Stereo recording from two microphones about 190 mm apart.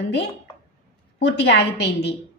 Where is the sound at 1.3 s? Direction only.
65° left (ahead or behind).